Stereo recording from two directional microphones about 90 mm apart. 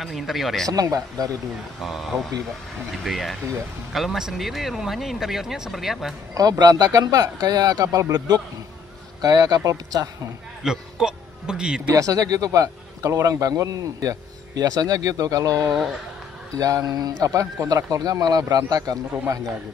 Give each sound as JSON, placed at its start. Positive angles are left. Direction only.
{"t": 0.0, "sound": "speech", "side_deg": 0}
{"t": 0.7, "sound": "speech", "side_deg": -45}
{"t": 1.8, "sound": "speech", "side_deg": 0}
{"t": 6.3, "sound": "speech", "side_deg": -45}
{"t": 10.6, "sound": "speech", "side_deg": -5}
{"t": 11.9, "sound": "speech", "side_deg": -40}